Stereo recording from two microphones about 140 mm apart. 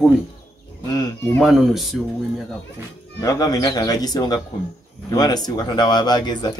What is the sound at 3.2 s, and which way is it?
Speech, 25° left (ahead or behind).